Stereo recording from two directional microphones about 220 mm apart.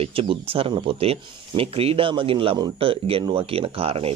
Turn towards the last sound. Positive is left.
turn(degrees=-25)  # may be behind; listen again after turning